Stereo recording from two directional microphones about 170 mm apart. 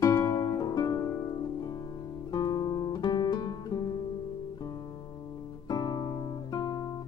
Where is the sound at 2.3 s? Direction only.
25° left (ahead or behind).